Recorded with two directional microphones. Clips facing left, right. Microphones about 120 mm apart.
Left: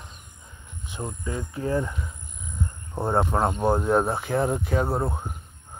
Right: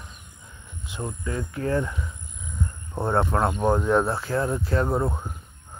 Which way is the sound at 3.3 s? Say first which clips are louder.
Even; 25° left (ahead or behind).